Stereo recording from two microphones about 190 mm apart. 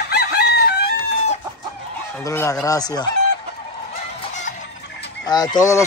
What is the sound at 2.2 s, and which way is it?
Speech, 15° left (ahead or behind).